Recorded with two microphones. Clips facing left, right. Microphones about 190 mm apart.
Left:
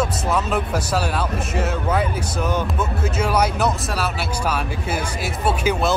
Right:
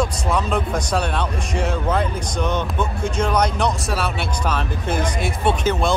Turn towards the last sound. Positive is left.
turn(degrees=5)  # may be behind; listen again after turning